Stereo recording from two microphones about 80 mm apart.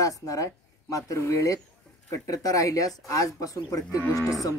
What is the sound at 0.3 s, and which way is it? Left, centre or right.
Speech, left.